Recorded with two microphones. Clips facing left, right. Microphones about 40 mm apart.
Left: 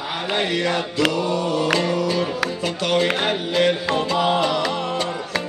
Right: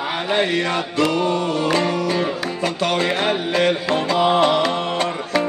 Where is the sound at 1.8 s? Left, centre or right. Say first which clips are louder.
Right 1 dB; right.